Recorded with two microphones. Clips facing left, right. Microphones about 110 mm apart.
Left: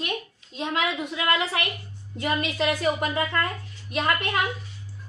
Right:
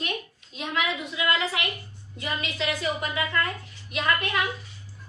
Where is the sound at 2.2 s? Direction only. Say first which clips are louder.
Left 5 dB; 50° left (ahead or behind).